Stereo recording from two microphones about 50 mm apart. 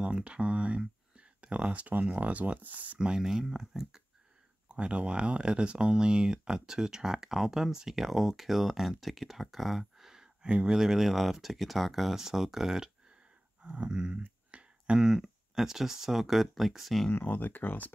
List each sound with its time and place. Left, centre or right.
0.0 s speech: right
3.0 s speech: centre
10.8 s speech: centre
13.6 s a sound: right
15.2 s speech: centre
17.1 s speech: left